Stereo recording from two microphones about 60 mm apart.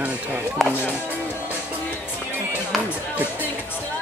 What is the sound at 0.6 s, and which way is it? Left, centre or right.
Speech, centre.